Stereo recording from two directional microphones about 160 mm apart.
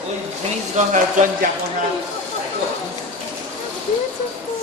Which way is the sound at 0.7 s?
50° right (ahead or behind).